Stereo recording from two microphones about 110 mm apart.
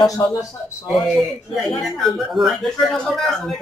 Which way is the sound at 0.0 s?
30° left (ahead or behind).